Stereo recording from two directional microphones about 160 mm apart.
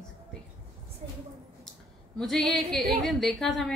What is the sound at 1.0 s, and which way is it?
Speech, 40° right (ahead or behind).